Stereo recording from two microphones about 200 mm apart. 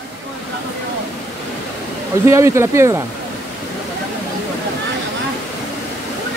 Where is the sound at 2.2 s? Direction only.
15° right (ahead or behind).